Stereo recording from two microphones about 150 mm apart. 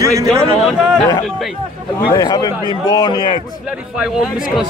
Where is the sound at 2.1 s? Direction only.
25° left (ahead or behind).